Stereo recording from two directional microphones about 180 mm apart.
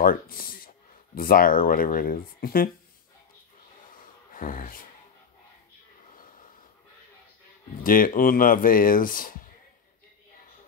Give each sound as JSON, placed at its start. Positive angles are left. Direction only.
{"t": 0.0, "sound": "speech", "side_deg": 55}
{"t": 4.3, "sound": "speech", "side_deg": 50}
{"t": 7.8, "sound": "speech", "side_deg": 50}